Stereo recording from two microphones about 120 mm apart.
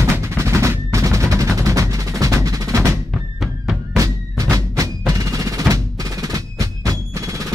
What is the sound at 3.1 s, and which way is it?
Music, centre (ahead or behind).